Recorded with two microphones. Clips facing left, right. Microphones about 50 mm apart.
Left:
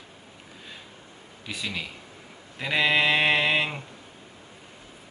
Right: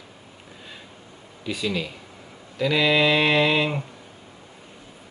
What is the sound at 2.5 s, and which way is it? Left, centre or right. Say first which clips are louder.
Mantra: right 3 dB; left.